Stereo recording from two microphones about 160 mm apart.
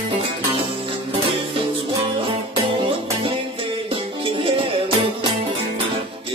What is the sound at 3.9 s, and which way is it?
Music, 35° right (ahead or behind).